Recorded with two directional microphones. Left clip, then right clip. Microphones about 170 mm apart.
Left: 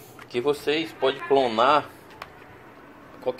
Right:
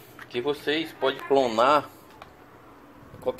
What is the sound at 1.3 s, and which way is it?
Speech, 5° right (ahead or behind).